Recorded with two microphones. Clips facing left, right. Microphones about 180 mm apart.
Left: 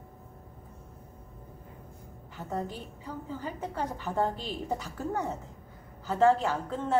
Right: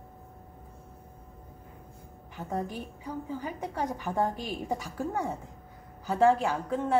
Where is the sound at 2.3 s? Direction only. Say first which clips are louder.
Right 1 dB; 15° right (ahead or behind).